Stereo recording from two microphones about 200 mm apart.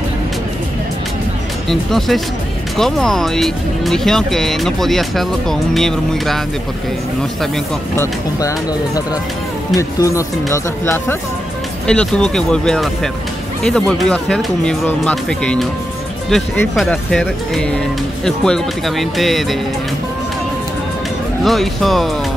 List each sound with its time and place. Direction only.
1.7 s speech: centre (ahead or behind)
8.0 s speech: 15° left (ahead or behind); by 19.4 s centre (ahead or behind)
21.5 s speech: centre (ahead or behind)